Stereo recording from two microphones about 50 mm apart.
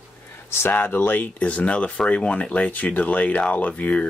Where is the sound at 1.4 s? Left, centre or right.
Left.